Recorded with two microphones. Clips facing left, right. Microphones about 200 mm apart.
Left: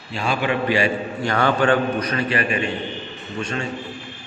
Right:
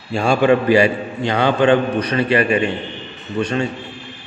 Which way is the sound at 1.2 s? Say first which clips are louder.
Right 4 dB; 20° right (ahead or behind).